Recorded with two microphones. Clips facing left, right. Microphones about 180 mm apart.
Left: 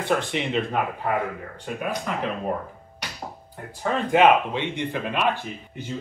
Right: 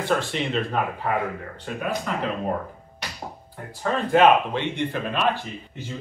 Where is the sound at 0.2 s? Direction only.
15° left (ahead or behind).